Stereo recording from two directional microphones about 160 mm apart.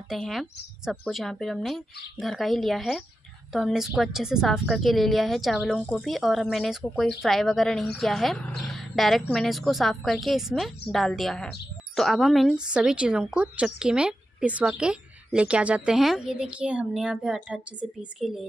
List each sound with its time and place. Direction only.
0.1 s a woman's voice: centre (ahead or behind)